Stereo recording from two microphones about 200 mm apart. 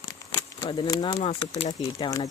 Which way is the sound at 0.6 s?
20° left (ahead or behind).